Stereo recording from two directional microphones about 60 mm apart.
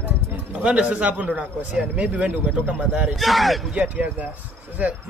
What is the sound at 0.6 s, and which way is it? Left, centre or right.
A man's voice, centre.